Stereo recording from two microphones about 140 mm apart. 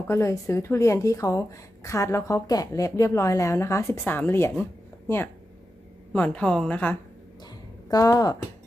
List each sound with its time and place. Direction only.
0.0 s a woman's voice: 20° left (ahead or behind)
7.9 s speech: 25° left (ahead or behind)